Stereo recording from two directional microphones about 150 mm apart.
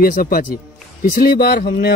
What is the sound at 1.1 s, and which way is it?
Speech, 85° left.